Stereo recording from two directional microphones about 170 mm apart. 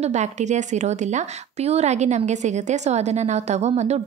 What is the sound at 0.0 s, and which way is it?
A woman's voice, 45° right (ahead or behind).